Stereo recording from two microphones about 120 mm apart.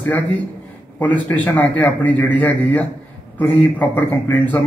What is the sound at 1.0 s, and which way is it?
A man's voice, 10° left (ahead or behind).